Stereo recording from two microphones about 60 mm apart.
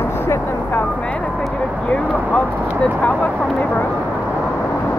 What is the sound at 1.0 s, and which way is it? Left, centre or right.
Speech, left.